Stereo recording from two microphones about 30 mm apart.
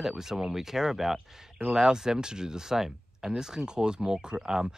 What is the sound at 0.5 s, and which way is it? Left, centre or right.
Speech, centre.